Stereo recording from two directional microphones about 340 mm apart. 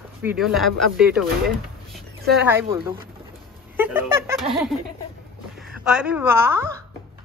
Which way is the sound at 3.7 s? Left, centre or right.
Centre.